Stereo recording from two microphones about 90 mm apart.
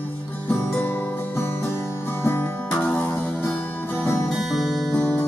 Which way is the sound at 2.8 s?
10° left (ahead or behind).